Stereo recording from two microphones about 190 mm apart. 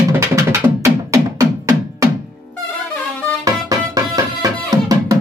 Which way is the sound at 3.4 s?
20° right (ahead or behind).